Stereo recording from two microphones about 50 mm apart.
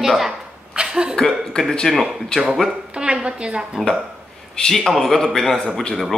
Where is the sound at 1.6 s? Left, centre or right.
Left.